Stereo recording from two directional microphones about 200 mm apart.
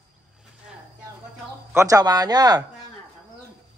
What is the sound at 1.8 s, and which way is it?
Speech, 15° right (ahead or behind).